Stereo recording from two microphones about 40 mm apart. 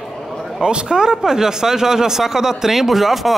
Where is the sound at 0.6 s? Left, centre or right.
Centre.